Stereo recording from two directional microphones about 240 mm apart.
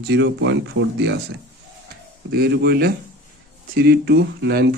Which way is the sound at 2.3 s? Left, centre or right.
Right.